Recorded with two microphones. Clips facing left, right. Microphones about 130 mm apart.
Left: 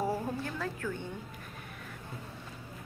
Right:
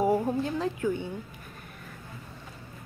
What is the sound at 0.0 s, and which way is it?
A woman's voice, 20° right (ahead or behind).